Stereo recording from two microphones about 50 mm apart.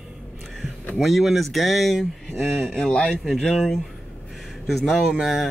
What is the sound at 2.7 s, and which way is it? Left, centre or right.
Speech, centre.